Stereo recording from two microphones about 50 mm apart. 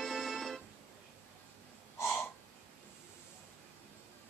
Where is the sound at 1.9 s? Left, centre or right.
Left.